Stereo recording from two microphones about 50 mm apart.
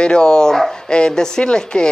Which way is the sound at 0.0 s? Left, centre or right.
Centre.